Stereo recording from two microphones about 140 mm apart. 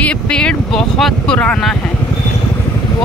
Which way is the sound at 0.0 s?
5° left (ahead or behind).